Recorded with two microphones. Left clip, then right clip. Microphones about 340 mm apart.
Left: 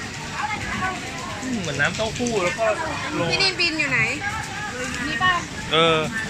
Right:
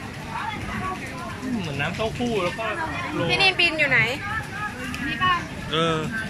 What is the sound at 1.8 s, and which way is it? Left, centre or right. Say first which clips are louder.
Speech: left 7 dB; centre.